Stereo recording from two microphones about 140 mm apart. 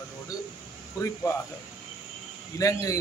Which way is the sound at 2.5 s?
25° left (ahead or behind).